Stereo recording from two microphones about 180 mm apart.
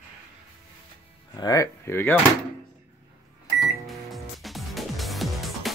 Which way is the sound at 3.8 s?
Centre (ahead or behind).